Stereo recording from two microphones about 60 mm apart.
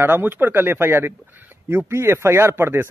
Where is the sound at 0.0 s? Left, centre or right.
Right.